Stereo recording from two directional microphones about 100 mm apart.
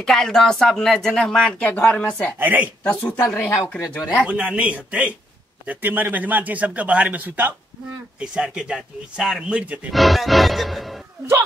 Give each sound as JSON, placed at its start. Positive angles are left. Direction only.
{"t": 0.0, "sound": "speech", "side_deg": 5}
{"t": 2.3, "sound": "a man's voice", "side_deg": -15}
{"t": 2.8, "sound": "speech", "side_deg": 15}
{"t": 4.3, "sound": "a man's voice", "side_deg": -15}
{"t": 9.9, "sound": "music", "side_deg": 0}